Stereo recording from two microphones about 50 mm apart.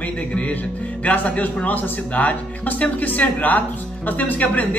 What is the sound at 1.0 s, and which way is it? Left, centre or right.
Speech, left.